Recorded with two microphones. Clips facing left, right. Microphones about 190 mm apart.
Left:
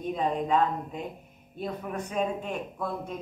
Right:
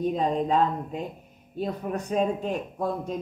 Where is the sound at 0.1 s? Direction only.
35° right (ahead or behind).